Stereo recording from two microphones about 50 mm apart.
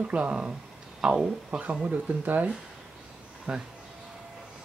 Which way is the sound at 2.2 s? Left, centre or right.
Right.